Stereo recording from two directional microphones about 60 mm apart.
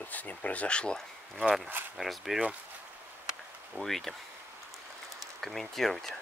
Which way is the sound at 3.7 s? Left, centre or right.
Centre.